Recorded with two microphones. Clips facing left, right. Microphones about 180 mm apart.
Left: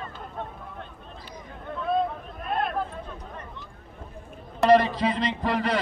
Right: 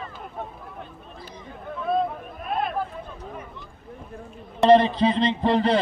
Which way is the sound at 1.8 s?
Centre (ahead or behind).